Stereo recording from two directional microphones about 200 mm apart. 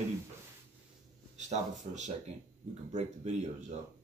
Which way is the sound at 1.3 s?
35° right (ahead or behind).